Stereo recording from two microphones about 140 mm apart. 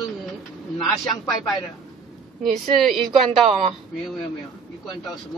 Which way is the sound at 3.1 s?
45° right (ahead or behind).